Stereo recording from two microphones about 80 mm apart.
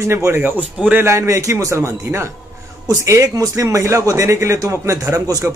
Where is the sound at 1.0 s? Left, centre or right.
Right.